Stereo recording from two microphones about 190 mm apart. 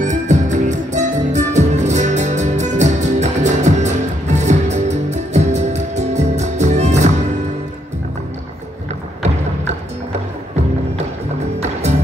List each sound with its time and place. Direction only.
0.0 s music: 40° right (ahead or behind)
11.6 s music: 35° right (ahead or behind)